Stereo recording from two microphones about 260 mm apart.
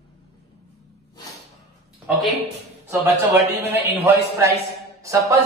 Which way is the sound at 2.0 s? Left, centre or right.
Centre.